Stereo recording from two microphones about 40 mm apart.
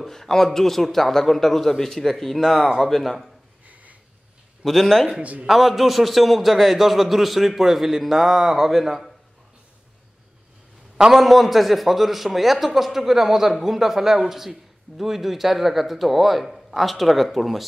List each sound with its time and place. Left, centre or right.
0.0 s a man's voice: centre
4.6 s a man's voice: centre
5.2 s a man's voice: right
5.5 s a man's voice: centre
11.0 s a man's voice: centre
11.2 s a man's voice: centre